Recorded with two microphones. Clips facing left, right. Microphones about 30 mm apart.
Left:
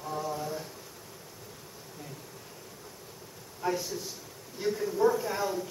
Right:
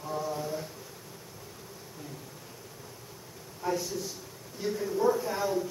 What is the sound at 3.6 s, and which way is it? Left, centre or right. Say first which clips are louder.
A man's voice: even; centre.